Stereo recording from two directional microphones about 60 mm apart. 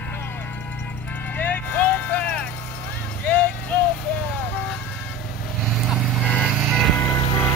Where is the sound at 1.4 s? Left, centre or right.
Left.